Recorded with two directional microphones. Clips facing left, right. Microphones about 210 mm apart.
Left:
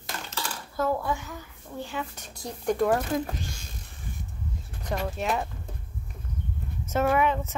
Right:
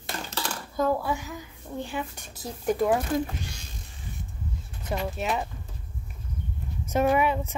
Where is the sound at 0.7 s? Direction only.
10° right (ahead or behind).